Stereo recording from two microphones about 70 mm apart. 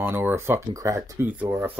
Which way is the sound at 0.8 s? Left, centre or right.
Right.